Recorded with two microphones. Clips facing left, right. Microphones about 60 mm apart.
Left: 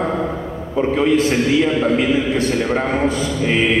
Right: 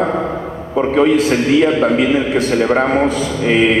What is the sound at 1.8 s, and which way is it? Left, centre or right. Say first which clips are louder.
A man's voice: right 3 dB; right.